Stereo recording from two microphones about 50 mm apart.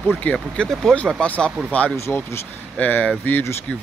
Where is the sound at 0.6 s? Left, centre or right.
Left.